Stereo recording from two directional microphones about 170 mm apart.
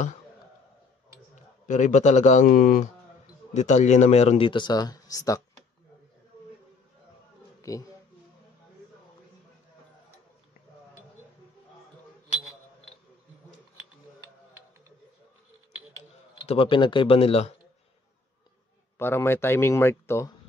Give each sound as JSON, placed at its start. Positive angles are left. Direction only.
{"t": 1.3, "sound": "a man's voice", "side_deg": 45}
{"t": 3.5, "sound": "speech", "side_deg": 45}
{"t": 7.7, "sound": "speech", "side_deg": 20}
{"t": 16.4, "sound": "speech", "side_deg": 30}
{"t": 18.9, "sound": "speech", "side_deg": 15}